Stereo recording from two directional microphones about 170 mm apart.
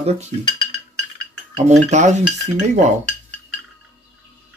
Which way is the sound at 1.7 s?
45° right (ahead or behind).